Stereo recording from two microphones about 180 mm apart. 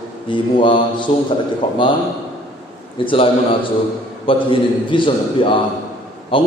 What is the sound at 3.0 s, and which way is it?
Speech, 30° left (ahead or behind).